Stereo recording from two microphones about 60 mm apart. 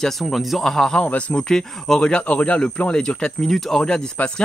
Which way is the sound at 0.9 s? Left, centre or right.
Left.